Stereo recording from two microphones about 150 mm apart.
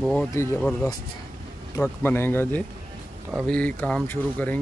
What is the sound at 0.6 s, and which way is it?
Speech, 5° left (ahead or behind).